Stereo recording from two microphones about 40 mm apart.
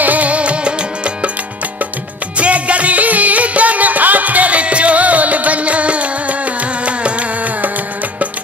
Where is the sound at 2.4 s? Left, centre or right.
Right.